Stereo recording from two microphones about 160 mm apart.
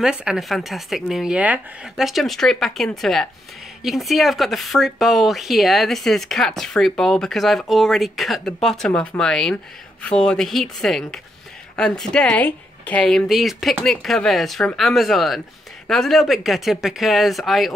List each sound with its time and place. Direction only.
0.0 s speech: 5° right (ahead or behind)